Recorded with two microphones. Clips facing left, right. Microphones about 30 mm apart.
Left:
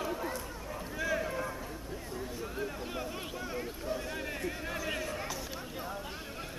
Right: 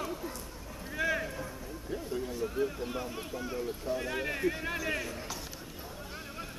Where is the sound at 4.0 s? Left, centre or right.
Centre.